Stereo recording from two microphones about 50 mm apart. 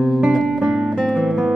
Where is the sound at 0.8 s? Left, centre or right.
Centre.